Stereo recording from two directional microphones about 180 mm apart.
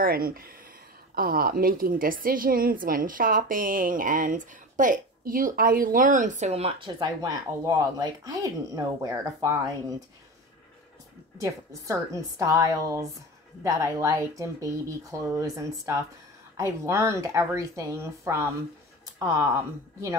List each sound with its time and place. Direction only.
0.0 s a woman's voice: 55° right (ahead or behind); by 10.0 s 20° right (ahead or behind)
11.3 s speech: 15° right (ahead or behind)